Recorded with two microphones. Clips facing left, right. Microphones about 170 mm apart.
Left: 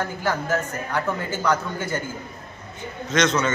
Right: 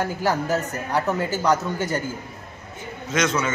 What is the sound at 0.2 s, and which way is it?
A man's voice, 35° right (ahead or behind).